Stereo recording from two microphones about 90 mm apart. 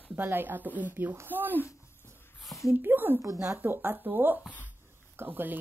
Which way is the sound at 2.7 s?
20° right (ahead or behind).